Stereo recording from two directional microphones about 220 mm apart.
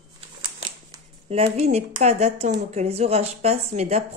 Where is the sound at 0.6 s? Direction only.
25° right (ahead or behind).